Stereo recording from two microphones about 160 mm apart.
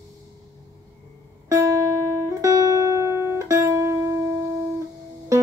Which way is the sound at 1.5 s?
20° right (ahead or behind).